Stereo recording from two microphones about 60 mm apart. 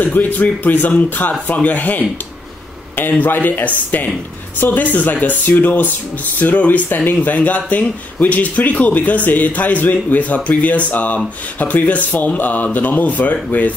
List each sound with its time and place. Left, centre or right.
0.0 s speech: left